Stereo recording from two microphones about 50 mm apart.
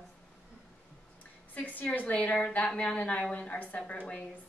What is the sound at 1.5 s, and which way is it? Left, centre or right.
A woman's voice, left.